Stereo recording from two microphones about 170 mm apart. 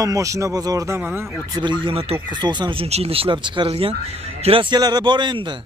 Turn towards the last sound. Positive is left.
turn(degrees=-30)  # may be behind; listen again after turning